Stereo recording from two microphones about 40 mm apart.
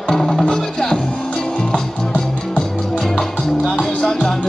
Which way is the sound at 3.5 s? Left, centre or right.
Centre.